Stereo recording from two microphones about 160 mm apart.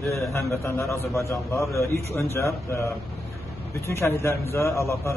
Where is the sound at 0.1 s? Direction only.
20° left (ahead or behind).